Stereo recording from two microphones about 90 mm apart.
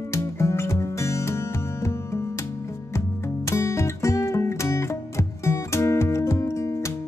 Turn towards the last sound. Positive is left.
turn(degrees=30)  # may be behind; listen again after turning